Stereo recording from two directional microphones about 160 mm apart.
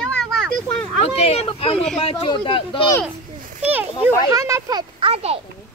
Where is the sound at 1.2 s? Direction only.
40° left (ahead or behind).